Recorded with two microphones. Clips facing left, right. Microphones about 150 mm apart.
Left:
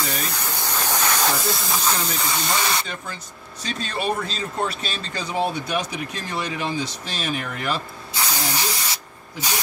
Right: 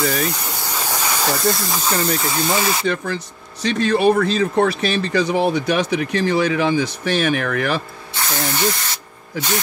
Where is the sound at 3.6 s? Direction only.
70° right (ahead or behind).